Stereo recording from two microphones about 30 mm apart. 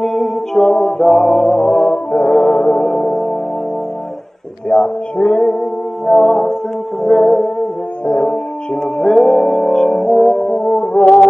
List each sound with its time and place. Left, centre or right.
0.0 s music: centre
1.6 s music: left
4.6 s a sound: left
6.0 s music: centre
8.1 s music: left
9.0 s music: centre
10.3 s brass instrument: left